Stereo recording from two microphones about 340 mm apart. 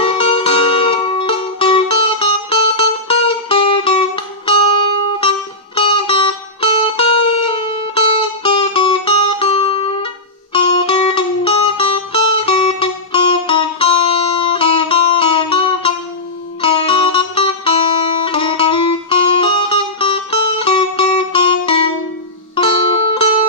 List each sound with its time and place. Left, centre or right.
0.0 s music: centre